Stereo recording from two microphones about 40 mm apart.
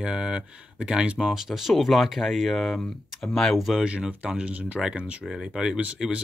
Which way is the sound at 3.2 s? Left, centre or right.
Centre.